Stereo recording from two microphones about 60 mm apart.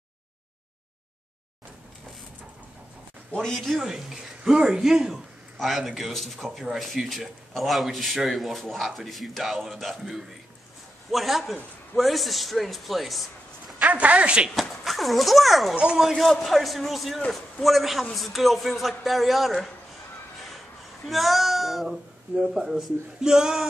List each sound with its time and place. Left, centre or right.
3.3 s a man's voice: centre
3.9 s a man's voice: centre
13.7 s speech: right
14.5 s speech: centre
15.7 s speech: centre
16.0 s a man's voice: centre
21.0 s a man's voice: centre